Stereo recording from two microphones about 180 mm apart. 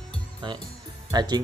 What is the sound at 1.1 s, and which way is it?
Speech, 25° right (ahead or behind).